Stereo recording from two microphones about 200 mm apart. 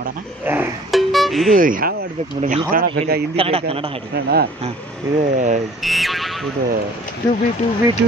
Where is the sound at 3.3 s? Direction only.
30° right (ahead or behind).